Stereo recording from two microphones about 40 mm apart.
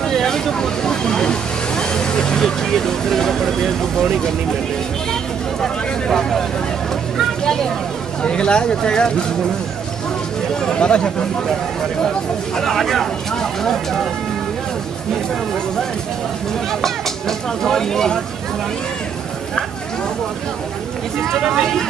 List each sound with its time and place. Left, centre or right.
0.1 s speech: centre
5.6 s speech: centre
7.4 s speech: centre
8.2 s speech: left
10.5 s speech: centre
12.5 s speech: centre
13.3 s a sound: centre
16.8 s speech: centre
21.4 s speech: centre